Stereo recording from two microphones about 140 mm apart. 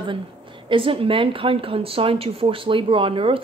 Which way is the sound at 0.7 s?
40° right (ahead or behind).